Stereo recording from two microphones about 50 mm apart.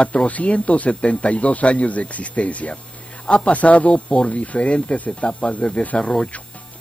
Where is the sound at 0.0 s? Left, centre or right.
Left.